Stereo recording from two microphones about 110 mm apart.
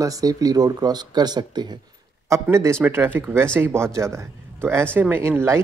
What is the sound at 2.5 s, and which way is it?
Speech, 25° right (ahead or behind).